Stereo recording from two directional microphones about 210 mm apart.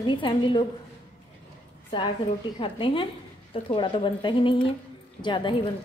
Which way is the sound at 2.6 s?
25° left (ahead or behind).